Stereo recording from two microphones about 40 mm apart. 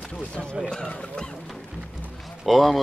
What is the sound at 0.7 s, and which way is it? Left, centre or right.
Speech, centre.